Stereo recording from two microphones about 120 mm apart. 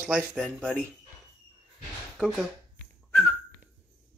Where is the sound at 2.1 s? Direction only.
Centre (ahead or behind).